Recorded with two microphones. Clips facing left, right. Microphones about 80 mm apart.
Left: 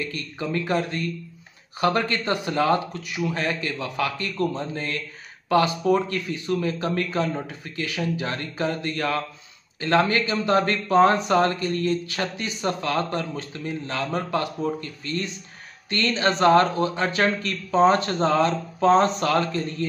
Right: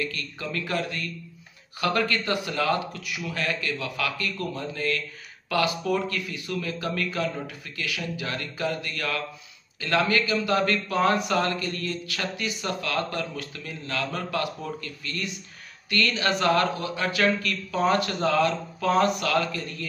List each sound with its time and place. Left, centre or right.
0.0 s speech: left